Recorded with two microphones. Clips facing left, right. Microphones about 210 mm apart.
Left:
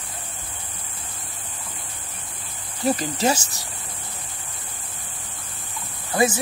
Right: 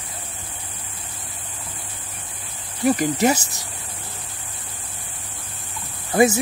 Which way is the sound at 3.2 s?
20° right (ahead or behind).